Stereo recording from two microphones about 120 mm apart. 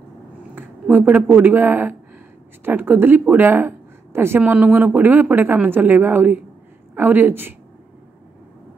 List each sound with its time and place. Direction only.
0.6 s a woman's voice: 15° right (ahead or behind)